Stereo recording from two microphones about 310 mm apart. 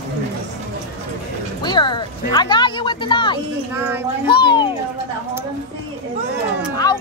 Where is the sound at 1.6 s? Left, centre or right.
Centre.